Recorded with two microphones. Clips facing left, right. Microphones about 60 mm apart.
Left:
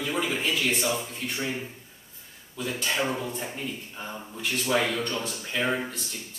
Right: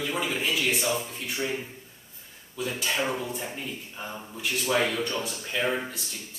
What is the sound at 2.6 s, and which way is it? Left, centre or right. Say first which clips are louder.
A man's voice: even; centre.